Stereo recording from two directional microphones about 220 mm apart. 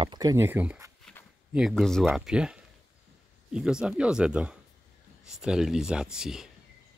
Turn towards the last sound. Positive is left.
turn(degrees=-5)  # may be behind; listen again after turning